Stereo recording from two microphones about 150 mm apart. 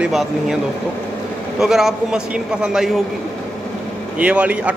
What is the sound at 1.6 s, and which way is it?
A man's voice, centre (ahead or behind).